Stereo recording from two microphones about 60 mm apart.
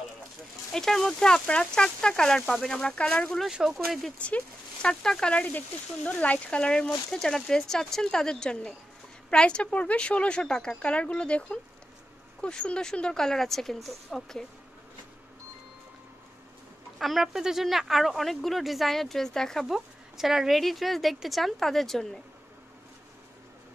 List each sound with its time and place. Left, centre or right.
0.7 s speech: centre
3.4 s speech: centre
4.8 s speech: centre
5.3 s speech: left; by 14.4 s centre
17.0 s speech: centre
19.6 s speech: centre